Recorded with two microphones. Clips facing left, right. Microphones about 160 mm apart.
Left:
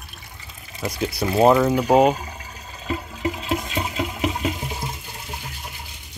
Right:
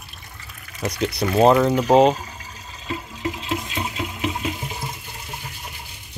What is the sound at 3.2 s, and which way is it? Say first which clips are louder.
Water: left 2 dB; 35° left (ahead or behind).